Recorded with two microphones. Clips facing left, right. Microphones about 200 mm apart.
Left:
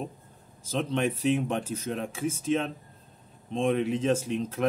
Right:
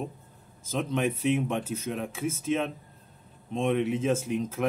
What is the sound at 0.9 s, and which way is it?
A man's voice, 5° right (ahead or behind).